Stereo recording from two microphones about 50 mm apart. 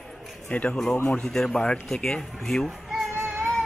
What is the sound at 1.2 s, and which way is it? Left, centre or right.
Speech, centre.